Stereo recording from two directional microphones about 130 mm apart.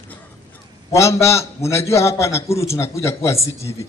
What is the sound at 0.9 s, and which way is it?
A man's voice, 20° left (ahead or behind).